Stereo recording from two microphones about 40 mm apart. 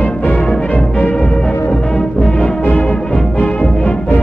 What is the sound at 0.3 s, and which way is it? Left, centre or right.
Music, left.